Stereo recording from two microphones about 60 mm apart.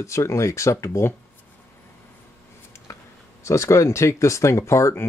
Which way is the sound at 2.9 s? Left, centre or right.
Left.